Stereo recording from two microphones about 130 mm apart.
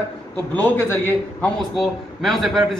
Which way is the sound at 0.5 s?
15° left (ahead or behind).